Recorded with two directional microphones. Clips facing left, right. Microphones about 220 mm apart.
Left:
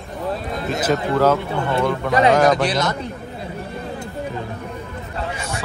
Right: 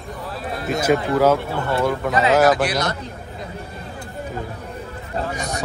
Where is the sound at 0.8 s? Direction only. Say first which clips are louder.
Right 1 dB; 10° right (ahead or behind).